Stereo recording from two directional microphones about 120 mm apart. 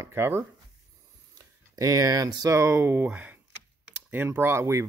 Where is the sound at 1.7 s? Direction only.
30° right (ahead or behind).